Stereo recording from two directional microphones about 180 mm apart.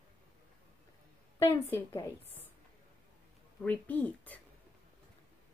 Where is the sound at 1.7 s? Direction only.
15° left (ahead or behind).